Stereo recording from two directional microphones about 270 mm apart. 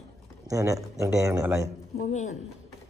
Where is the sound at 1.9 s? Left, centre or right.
Left.